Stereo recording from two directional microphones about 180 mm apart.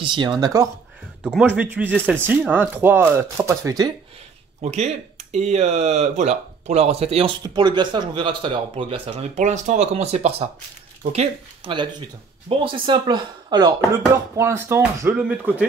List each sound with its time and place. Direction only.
0.0 s speech: 25° right (ahead or behind)
1.2 s speech: 5° right (ahead or behind)
4.6 s speech: 40° right (ahead or behind); by 15.5 s 10° right (ahead or behind)